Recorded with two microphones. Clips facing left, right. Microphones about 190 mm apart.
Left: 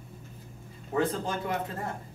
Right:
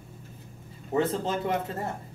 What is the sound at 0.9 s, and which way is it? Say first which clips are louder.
Speech: right 2 dB; 25° right (ahead or behind).